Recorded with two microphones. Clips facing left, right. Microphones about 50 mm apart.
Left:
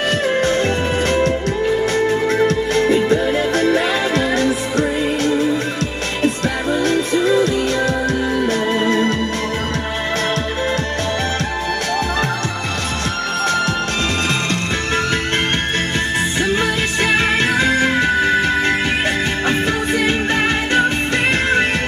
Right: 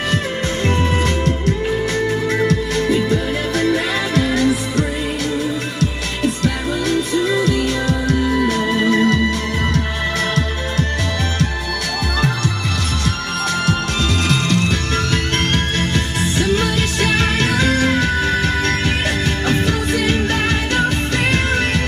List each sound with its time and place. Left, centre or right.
2.4 s music: left
16.3 s music: left
19.4 s music: left